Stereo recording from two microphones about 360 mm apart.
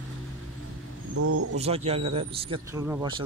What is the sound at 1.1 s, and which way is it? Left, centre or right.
Speech, right.